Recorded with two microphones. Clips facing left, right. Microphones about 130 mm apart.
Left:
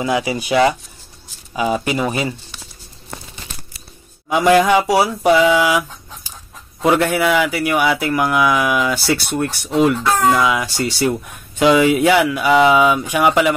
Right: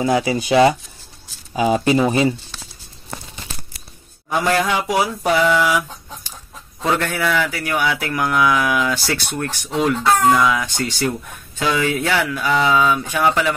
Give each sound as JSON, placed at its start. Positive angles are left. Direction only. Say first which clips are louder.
{"t": 0.4, "sound": "speech", "louder": "right 2 dB", "side_deg": -30}
{"t": 4.3, "sound": "speech", "louder": "left 6 dB", "side_deg": 10}
{"t": 4.8, "sound": "a sound", "louder": "left 4 dB", "side_deg": 35}
{"t": 5.2, "sound": "speech", "louder": "left 3 dB", "side_deg": 10}